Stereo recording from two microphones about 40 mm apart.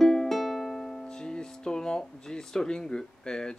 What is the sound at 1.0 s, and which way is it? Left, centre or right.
Speech, centre.